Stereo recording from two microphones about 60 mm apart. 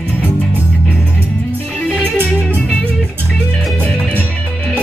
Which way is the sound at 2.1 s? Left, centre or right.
Right.